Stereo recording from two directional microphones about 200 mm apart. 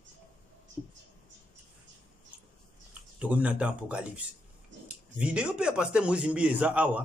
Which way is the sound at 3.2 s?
5° right (ahead or behind).